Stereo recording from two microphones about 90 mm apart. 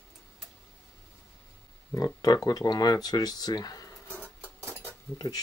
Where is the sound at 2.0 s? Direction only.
45° left (ahead or behind).